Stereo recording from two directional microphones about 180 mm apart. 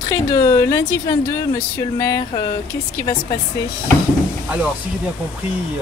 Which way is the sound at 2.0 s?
20° left (ahead or behind).